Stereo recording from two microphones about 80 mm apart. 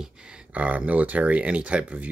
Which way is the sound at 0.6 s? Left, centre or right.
Centre.